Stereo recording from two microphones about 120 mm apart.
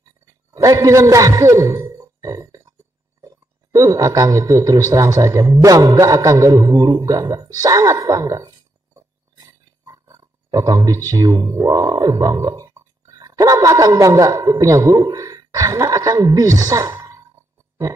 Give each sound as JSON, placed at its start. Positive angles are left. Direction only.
{"t": 0.5, "sound": "a man's voice", "side_deg": -30}
{"t": 8.5, "sound": "a sound", "side_deg": -35}
{"t": 13.0, "sound": "speech", "side_deg": -30}